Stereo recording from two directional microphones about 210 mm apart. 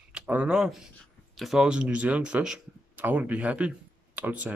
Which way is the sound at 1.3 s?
Centre (ahead or behind).